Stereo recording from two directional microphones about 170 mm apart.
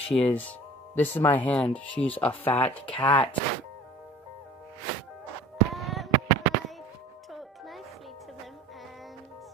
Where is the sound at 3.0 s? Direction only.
30° left (ahead or behind).